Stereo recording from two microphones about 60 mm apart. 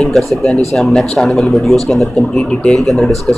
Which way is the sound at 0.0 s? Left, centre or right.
Centre.